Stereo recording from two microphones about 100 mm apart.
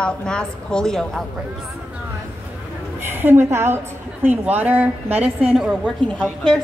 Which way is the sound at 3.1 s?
20° right (ahead or behind).